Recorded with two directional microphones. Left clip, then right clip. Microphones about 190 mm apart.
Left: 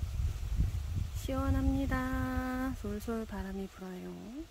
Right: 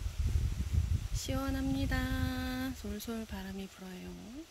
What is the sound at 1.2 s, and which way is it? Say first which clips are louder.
Female singing: left 1 dB; 15° left (ahead or behind).